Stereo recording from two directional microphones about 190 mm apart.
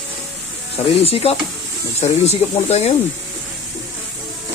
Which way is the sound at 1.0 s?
30° left (ahead or behind).